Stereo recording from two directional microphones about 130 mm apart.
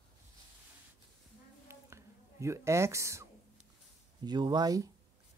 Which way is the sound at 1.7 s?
20° right (ahead or behind).